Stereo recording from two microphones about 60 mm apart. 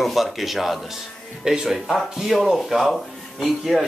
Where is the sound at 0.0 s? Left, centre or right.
Centre.